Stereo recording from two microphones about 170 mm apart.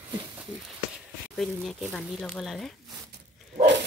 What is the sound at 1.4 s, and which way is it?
Speech, centre (ahead or behind).